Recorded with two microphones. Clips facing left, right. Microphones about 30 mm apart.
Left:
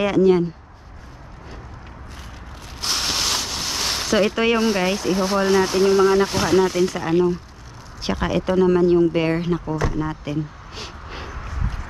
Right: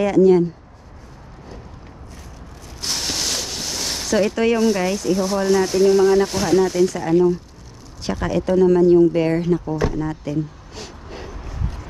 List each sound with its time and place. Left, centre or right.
0.0 s speech: left
2.8 s speech: centre
9.9 s a sound: centre